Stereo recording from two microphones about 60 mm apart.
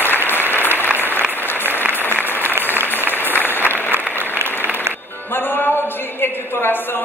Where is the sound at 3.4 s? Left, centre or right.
Left.